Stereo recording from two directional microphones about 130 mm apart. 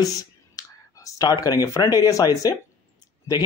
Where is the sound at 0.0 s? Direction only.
25° left (ahead or behind).